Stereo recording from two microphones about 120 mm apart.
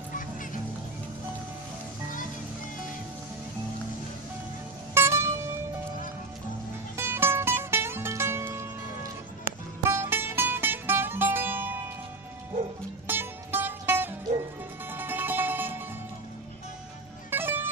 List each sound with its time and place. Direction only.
4.9 s music: 20° right (ahead or behind)
7.0 s music: 20° right (ahead or behind)
9.8 s music: 20° right (ahead or behind)
13.0 s music: 15° right (ahead or behind)
17.3 s music: 15° right (ahead or behind)